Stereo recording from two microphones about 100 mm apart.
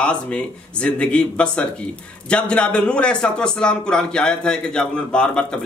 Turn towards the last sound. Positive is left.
turn(degrees=10)  # may be behind; listen again after turning